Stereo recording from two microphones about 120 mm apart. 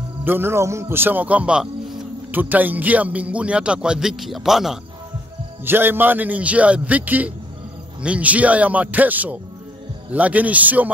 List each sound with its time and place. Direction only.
0.2 s speech: 20° right (ahead or behind); by 4.7 s centre (ahead or behind)
5.7 s speech: 15° right (ahead or behind)